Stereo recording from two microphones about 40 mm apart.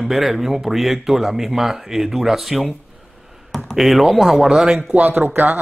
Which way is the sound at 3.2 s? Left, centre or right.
Centre.